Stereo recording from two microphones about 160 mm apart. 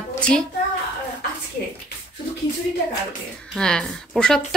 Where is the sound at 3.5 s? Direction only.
5° left (ahead or behind).